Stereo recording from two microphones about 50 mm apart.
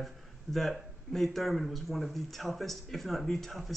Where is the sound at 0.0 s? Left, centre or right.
Centre.